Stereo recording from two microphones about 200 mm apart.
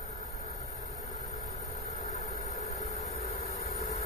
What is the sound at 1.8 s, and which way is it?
Vehicle, 30° left (ahead or behind).